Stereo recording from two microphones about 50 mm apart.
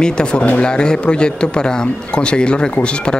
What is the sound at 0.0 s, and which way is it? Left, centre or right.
Speech, centre.